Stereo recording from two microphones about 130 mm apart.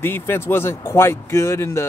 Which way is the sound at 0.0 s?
15° left (ahead or behind).